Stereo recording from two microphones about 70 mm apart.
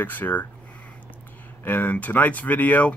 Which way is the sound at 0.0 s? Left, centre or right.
Left.